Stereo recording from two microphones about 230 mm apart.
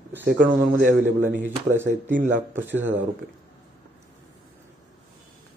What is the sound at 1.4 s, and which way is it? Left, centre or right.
Speech, centre.